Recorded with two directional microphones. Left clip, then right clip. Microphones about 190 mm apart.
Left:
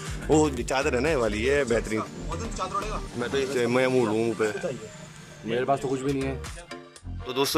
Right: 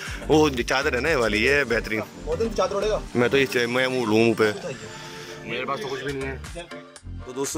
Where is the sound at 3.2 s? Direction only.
10° right (ahead or behind).